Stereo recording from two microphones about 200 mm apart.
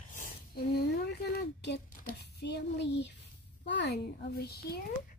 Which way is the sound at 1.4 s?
55° left (ahead or behind).